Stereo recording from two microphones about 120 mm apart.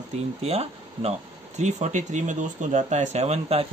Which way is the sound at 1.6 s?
85° right.